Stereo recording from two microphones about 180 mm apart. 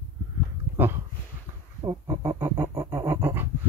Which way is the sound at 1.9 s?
15° right (ahead or behind).